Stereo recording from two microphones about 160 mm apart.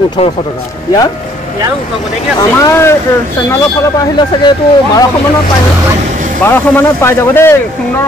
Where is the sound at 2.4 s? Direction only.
20° left (ahead or behind).